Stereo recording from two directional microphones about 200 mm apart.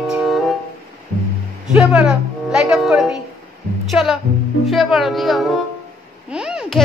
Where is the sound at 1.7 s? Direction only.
5° right (ahead or behind).